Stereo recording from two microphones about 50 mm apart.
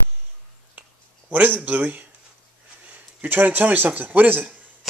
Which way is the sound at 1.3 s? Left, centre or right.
Right.